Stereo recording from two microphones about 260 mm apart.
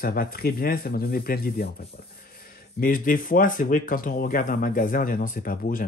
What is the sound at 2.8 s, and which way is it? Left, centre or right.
Speech, left.